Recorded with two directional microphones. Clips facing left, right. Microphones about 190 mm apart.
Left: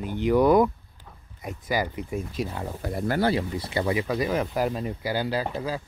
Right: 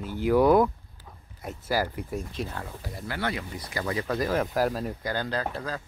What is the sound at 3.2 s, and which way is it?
Speech, 30° left (ahead or behind).